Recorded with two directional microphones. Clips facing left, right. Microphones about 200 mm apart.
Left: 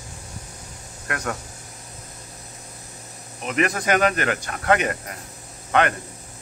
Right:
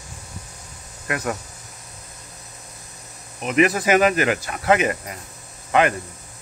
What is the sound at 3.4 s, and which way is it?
Speech, 5° right (ahead or behind).